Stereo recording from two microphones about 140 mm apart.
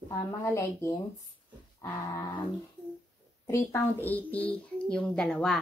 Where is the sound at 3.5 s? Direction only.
20° left (ahead or behind).